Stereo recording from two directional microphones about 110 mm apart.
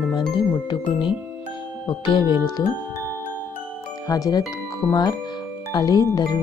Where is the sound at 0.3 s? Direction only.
45° left (ahead or behind).